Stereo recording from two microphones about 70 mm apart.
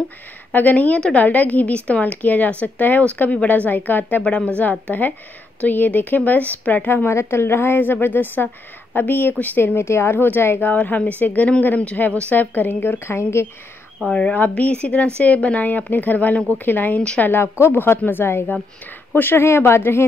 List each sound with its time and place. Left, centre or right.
0.5 s a woman's voice: left
4.2 s a woman's voice: centre
7.1 s a woman's voice: left
9.8 s a woman's voice: left
14.0 s a woman's voice: centre; by 20.1 s left